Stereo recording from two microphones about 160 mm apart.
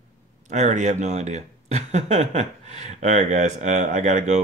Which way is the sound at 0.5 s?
50° right (ahead or behind).